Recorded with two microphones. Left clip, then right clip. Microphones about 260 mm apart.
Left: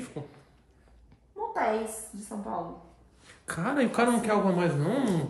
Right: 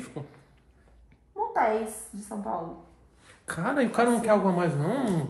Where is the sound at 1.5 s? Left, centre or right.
Centre.